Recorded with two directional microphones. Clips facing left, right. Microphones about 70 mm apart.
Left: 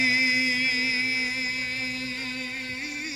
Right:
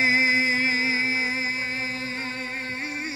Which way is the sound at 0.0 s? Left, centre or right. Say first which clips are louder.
Right 3 dB; right.